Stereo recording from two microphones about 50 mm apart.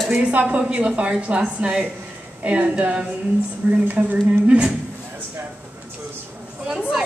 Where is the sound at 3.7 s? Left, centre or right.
Right.